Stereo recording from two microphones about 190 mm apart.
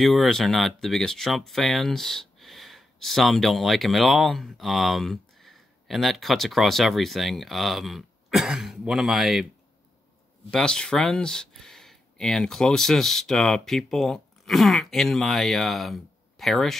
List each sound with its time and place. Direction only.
0.0 s speech: centre (ahead or behind)
10.5 s speech: 5° left (ahead or behind)